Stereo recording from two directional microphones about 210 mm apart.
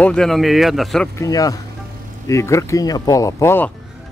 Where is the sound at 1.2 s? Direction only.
15° left (ahead or behind).